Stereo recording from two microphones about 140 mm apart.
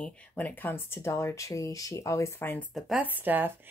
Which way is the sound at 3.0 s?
15° right (ahead or behind).